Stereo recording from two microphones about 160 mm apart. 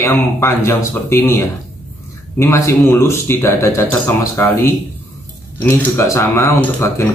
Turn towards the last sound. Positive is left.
turn(degrees=15)  # may be behind; listen again after turning